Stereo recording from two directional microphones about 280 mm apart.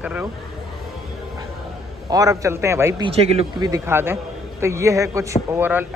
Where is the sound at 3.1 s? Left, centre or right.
Right.